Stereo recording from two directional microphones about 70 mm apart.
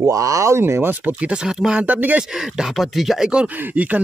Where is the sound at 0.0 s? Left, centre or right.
Right.